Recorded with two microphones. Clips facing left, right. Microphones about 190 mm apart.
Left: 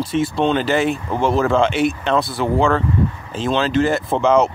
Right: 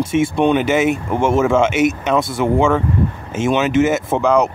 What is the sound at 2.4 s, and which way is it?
Speech, 10° right (ahead or behind).